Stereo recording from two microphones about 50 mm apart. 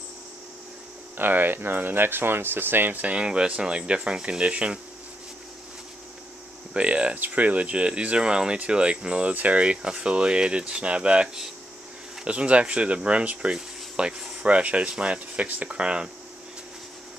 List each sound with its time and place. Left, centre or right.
1.1 s speech: right
3.0 s speech: right
6.7 s speech: right
7.2 s speech: right
12.3 s speech: right
13.6 s a sound: centre
14.5 s speech: right